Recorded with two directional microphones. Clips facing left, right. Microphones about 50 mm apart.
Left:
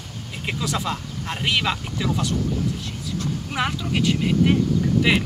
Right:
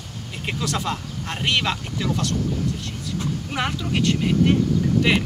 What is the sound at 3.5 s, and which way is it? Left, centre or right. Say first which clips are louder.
Speech: left 1 dB; centre.